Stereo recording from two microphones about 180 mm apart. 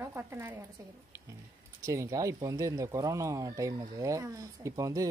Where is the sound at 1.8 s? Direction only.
15° right (ahead or behind).